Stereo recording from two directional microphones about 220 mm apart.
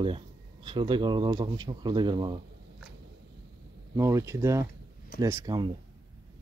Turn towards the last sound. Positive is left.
turn(degrees=-15)  # may be behind; listen again after turning